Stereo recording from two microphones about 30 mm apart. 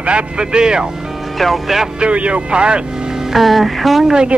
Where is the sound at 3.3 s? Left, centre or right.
Centre.